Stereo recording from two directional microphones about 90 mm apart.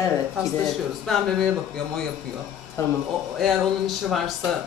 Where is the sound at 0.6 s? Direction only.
5° left (ahead or behind).